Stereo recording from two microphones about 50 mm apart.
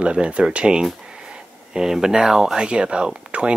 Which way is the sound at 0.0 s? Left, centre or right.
Right.